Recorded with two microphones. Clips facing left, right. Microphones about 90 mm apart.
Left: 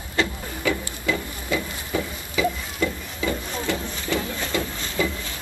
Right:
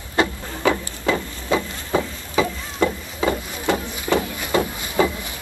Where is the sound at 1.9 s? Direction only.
65° right (ahead or behind).